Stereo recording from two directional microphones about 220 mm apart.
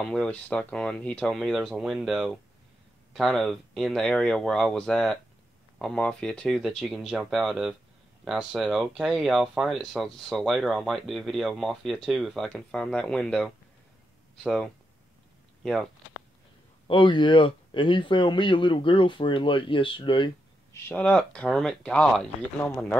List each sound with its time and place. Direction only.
0.0 s speech: 5° left (ahead or behind)
16.8 s speech: 20° left (ahead or behind)
20.9 s speech: 5° left (ahead or behind)